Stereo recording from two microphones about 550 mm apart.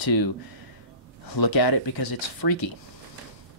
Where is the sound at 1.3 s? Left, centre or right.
Left.